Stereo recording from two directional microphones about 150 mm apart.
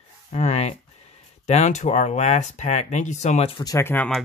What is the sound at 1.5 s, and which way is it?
Speech, 50° left (ahead or behind).